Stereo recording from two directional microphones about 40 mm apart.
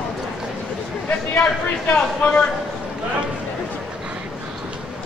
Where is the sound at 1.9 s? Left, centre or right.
Left.